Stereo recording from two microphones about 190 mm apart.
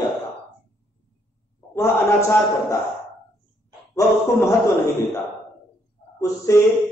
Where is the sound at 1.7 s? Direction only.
15° left (ahead or behind).